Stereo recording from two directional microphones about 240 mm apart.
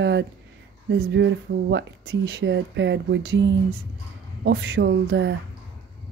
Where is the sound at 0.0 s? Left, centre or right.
Right.